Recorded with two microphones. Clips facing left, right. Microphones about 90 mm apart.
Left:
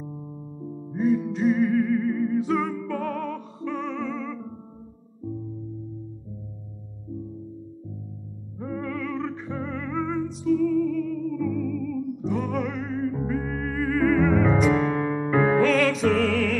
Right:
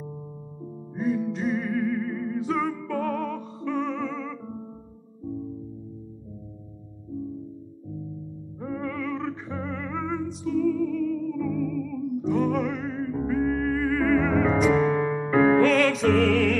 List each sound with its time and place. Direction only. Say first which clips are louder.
0.9 s music: left 3 dB; centre (ahead or behind)
8.5 s music: even; centre (ahead or behind)
9.7 s music: left 2 dB; 15° right (ahead or behind)
10.1 s music: left 3 dB; centre (ahead or behind)
13.7 s music: right 2 dB; 15° right (ahead or behind)
13.9 s music: left 3 dB; 15° left (ahead or behind)
14.4 s music: even; centre (ahead or behind)
15.0 s music: even; 15° right (ahead or behind)
15.3 s music: right 2 dB; 15° left (ahead or behind)
15.6 s music: even; centre (ahead or behind)